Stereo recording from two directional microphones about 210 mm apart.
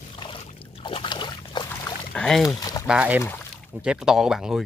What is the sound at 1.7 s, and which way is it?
Rowboat, 15° left (ahead or behind).